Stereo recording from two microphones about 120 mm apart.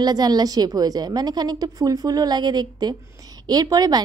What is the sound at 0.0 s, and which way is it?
A woman's voice, 35° right (ahead or behind).